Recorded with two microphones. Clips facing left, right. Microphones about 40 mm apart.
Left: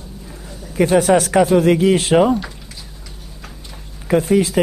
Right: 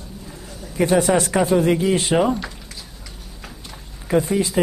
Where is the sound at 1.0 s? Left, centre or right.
Left.